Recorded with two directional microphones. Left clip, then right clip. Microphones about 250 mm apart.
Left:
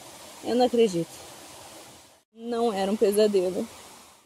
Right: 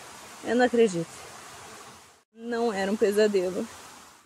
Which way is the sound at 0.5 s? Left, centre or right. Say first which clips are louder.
Even; centre.